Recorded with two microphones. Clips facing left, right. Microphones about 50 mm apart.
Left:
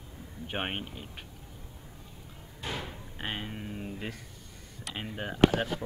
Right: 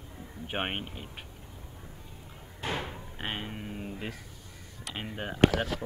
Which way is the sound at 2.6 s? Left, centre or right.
Right.